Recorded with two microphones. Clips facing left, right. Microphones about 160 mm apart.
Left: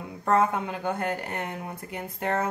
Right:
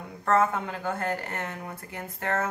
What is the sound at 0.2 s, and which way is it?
Speech, 15° left (ahead or behind).